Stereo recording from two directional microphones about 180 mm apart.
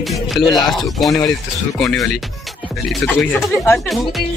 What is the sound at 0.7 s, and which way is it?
Speech, centre (ahead or behind).